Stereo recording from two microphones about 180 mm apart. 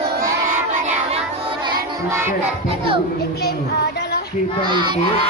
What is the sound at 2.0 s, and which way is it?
Music, 15° right (ahead or behind).